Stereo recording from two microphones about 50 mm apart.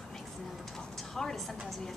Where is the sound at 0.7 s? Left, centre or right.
Centre.